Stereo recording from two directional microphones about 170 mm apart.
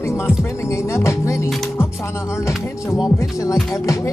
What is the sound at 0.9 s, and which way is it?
Speech, 15° left (ahead or behind).